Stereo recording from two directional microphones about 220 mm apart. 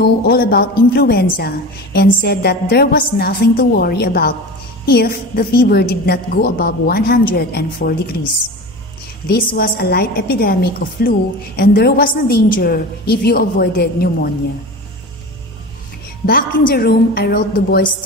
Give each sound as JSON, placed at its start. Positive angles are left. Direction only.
{"t": 0.0, "sound": "a woman's voice", "side_deg": 45}
{"t": 9.3, "sound": "a woman's voice", "side_deg": 45}
{"t": 16.3, "sound": "a woman's voice", "side_deg": 45}